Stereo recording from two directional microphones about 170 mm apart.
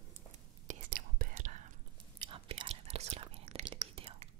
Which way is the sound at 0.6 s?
55° right (ahead or behind).